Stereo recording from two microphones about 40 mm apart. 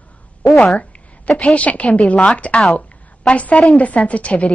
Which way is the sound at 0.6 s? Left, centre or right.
Left.